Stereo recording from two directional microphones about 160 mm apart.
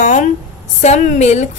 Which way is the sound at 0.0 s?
50° left (ahead or behind).